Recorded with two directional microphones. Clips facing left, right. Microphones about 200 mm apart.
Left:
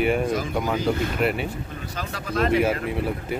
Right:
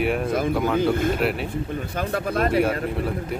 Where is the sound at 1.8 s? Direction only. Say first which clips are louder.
Right 7 dB; 55° right (ahead or behind).